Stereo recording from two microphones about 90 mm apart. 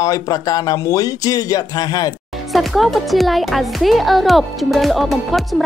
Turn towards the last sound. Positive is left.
turn(degrees=0)  # may be behind; listen again after turning